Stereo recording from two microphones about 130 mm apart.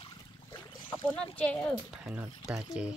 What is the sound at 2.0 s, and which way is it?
Speech, 10° right (ahead or behind).